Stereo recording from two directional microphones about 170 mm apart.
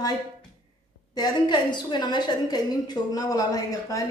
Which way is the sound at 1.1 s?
25° left (ahead or behind).